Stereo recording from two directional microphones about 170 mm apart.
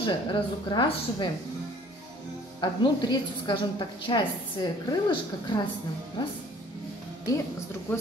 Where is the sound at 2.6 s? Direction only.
25° left (ahead or behind).